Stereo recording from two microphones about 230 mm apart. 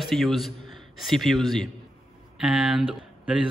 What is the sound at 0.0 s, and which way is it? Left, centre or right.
A man's voice, centre.